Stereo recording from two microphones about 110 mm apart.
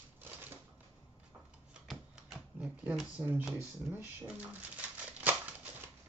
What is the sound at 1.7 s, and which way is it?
Typewriter, 5° right (ahead or behind).